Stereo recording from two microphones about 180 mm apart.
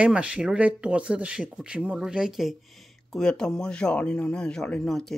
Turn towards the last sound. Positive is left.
turn(degrees=0)  # may be behind; listen again after turning